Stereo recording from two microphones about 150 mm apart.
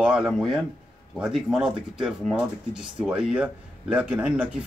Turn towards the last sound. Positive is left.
turn(degrees=-10)  # may be behind; listen again after turning